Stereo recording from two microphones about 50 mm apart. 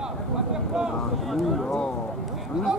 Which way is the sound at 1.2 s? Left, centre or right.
Centre.